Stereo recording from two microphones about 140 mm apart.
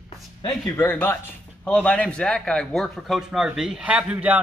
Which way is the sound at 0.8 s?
15° left (ahead or behind).